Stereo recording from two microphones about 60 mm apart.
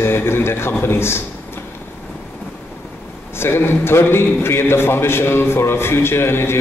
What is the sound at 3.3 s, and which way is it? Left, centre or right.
A man's voice, left.